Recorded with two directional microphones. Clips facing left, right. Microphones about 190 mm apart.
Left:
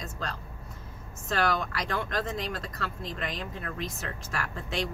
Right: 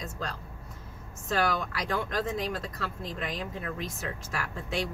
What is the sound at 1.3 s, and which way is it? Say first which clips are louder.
Speech: even; 10° right (ahead or behind).